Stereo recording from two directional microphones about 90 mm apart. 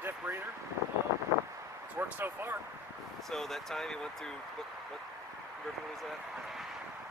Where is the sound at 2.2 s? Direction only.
25° right (ahead or behind).